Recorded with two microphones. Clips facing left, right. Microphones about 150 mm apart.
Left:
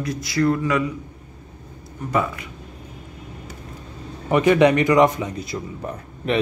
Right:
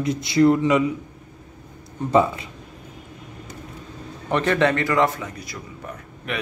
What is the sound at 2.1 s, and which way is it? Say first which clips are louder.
Speech: right 5 dB; 25° right (ahead or behind).